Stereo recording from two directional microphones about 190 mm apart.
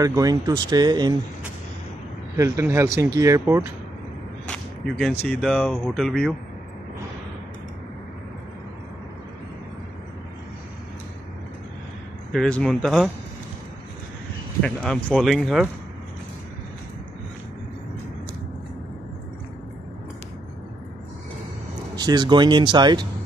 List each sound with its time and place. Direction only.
0.0 s speech: 20° right (ahead or behind)
2.3 s speech: 15° right (ahead or behind)
4.5 s whip: 5° left (ahead or behind)
5.4 s speech: 5° left (ahead or behind)
12.3 s speech: 5° left (ahead or behind)
14.6 s speech: 5° left (ahead or behind)
21.9 s speech: 20° right (ahead or behind)